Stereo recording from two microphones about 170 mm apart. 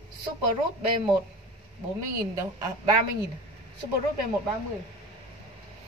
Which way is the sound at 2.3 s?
20° right (ahead or behind).